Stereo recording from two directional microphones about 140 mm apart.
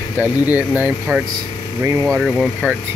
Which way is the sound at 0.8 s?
10° right (ahead or behind).